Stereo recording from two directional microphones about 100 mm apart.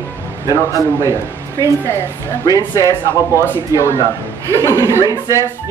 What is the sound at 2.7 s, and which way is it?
Speech, 35° left (ahead or behind).